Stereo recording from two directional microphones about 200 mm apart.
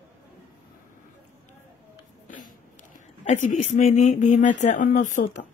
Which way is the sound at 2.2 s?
40° left (ahead or behind).